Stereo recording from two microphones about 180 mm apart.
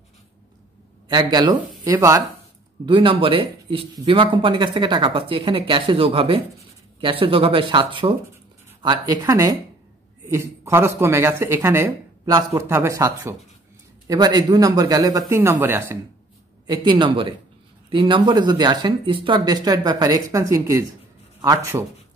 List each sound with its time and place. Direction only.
1.0 s speech: 25° right (ahead or behind)
2.8 s speech: 25° right (ahead or behind)
16.6 s speech: 25° right (ahead or behind)